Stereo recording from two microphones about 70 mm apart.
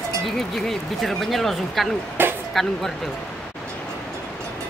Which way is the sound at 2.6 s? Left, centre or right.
Centre.